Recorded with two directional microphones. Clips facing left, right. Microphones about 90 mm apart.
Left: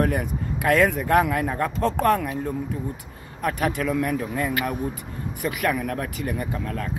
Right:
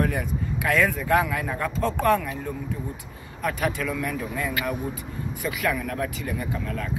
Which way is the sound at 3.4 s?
40° left (ahead or behind).